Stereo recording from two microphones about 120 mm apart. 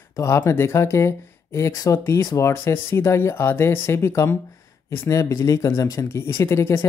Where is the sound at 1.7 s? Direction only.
35° left (ahead or behind).